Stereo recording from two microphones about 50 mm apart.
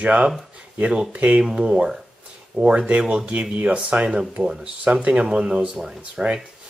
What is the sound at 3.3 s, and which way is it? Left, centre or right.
Speech, right.